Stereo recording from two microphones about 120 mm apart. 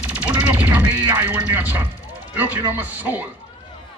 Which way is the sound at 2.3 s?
15° right (ahead or behind).